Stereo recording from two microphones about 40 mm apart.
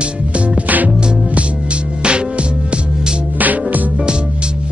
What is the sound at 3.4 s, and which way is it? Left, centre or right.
Music, right.